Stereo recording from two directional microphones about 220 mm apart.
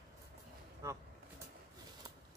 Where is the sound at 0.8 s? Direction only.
15° right (ahead or behind).